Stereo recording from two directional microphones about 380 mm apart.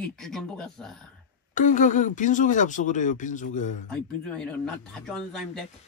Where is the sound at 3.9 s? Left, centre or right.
Centre.